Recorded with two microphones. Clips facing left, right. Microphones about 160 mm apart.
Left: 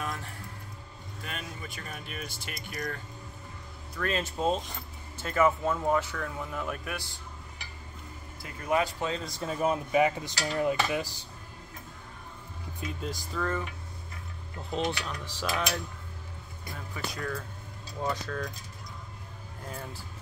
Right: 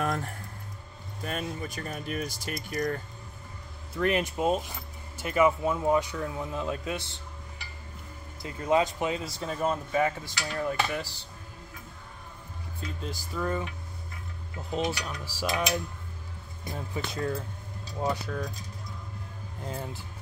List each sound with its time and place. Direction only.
0.0 s music: 50° right (ahead or behind)
1.2 s speech: 40° right (ahead or behind)
3.9 s speech: 20° right (ahead or behind)
8.4 s speech: 25° right (ahead or behind)
9.2 s speech: centre (ahead or behind)
13.4 s speech: 15° right (ahead or behind)
14.7 s speech: 5° right (ahead or behind)
16.6 s speech: 25° right (ahead or behind)
18.0 s speech: 10° right (ahead or behind)
19.6 s speech: 20° right (ahead or behind)